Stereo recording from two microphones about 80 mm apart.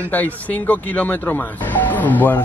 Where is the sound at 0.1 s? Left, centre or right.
Left.